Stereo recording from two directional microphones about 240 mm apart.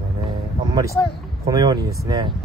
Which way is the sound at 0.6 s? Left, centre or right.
Centre.